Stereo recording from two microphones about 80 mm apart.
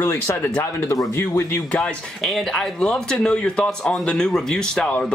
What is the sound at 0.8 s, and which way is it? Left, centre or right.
Speech, left.